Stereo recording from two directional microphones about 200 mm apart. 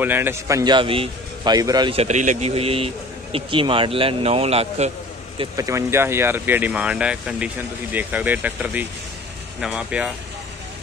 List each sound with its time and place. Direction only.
0.0 s a man's voice: 10° right (ahead or behind); by 4.9 s 30° right (ahead or behind)
5.4 s speech: 15° right (ahead or behind)